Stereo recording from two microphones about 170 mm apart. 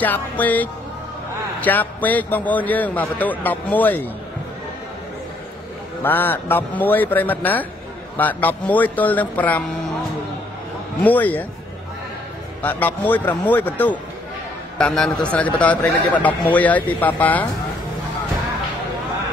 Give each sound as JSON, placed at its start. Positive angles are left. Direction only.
{"t": 0.0, "sound": "a man's voice", "side_deg": 10}
{"t": 6.0, "sound": "a man's voice", "side_deg": 10}
{"t": 11.0, "sound": "a man's voice", "side_deg": 10}
{"t": 12.6, "sound": "a man's voice", "side_deg": 10}